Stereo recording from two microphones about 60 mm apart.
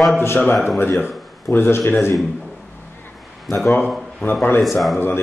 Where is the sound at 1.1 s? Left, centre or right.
Centre.